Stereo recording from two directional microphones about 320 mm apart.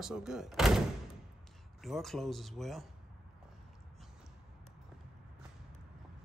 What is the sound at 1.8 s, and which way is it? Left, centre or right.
Speech, centre.